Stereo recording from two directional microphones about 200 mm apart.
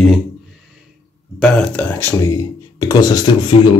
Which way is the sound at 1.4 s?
5° left (ahead or behind).